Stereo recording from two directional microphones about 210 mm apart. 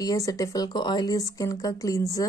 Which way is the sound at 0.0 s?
15° left (ahead or behind).